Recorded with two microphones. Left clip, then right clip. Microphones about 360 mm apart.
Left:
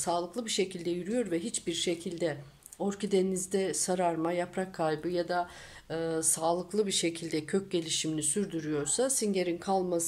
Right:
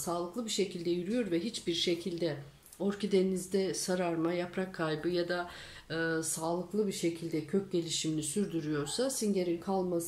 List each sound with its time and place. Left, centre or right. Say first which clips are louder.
0.0 s speech: left 4 dB; left